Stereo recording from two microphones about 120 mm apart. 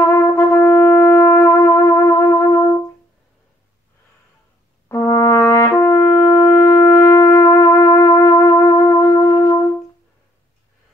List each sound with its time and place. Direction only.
0.0 s shofar: 20° left (ahead or behind)
4.8 s brass instrument: 25° left (ahead or behind)